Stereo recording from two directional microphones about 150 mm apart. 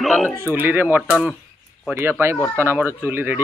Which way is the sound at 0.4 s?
15° right (ahead or behind).